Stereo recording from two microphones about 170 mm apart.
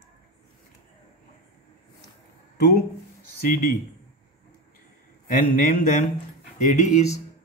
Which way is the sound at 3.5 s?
65° left (ahead or behind).